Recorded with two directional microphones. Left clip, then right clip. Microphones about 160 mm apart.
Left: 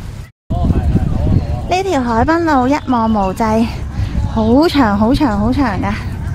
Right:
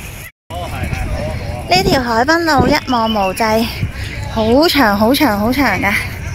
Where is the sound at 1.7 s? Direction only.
15° left (ahead or behind).